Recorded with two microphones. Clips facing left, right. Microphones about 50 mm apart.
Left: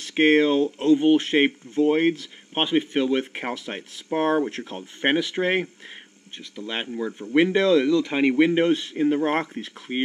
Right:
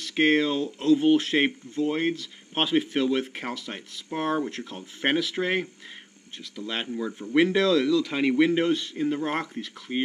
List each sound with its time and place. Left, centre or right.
0.1 s speech: left
0.9 s speech: centre
2.6 s speech: centre